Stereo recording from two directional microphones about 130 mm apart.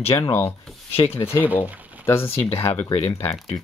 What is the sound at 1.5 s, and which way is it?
Speech, 20° left (ahead or behind).